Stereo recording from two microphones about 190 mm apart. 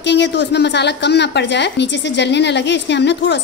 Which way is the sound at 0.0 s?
65° left (ahead or behind).